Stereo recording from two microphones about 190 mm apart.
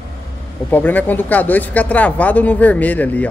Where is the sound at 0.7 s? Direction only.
10° left (ahead or behind).